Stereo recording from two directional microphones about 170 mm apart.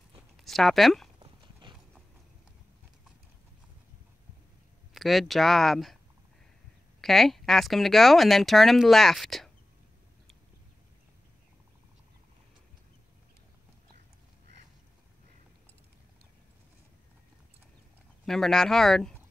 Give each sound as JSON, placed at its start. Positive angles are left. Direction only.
{"t": 0.4, "sound": "speech", "side_deg": 0}
{"t": 1.2, "sound": "clip-clop", "side_deg": -30}
{"t": 4.9, "sound": "speech", "side_deg": 0}
{"t": 7.0, "sound": "speech", "side_deg": 0}
{"t": 18.2, "sound": "speech", "side_deg": 0}